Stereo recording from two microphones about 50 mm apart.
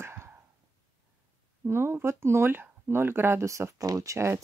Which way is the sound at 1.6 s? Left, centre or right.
Right.